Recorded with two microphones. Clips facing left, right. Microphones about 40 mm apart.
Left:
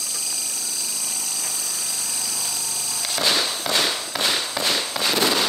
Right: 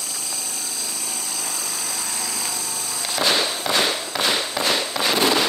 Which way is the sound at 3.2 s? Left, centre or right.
Centre.